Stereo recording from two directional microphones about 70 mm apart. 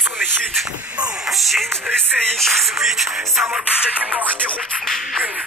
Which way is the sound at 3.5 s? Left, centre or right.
Centre.